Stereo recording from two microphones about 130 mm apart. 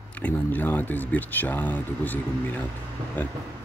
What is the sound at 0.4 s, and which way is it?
Speech, 15° left (ahead or behind).